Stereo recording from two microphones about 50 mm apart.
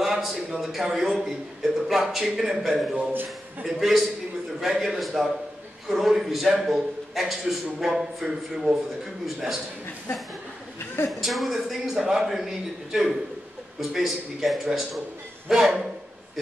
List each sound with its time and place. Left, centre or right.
0.0 s a man's voice: centre
3.1 s a man's voice: right
3.6 s a man's voice: centre
11.1 s a man's voice: centre